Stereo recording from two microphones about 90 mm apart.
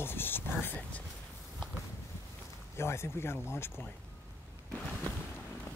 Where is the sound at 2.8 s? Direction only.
30° left (ahead or behind).